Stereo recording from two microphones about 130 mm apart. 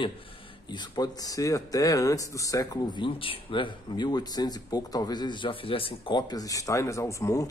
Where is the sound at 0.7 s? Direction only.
30° left (ahead or behind).